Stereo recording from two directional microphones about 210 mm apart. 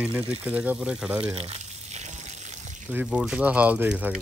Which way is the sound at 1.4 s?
30° right (ahead or behind).